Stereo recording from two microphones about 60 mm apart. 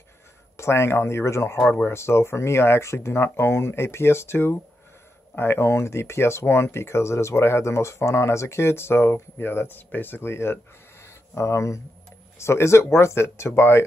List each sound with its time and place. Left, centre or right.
0.6 s speech: left